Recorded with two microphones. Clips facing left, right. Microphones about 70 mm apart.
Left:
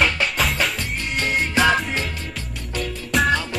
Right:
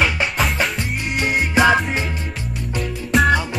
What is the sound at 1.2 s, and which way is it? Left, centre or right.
Music, centre.